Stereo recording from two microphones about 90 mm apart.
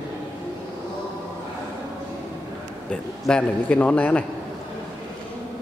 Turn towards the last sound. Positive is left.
turn(degrees=15)  # may be behind; listen again after turning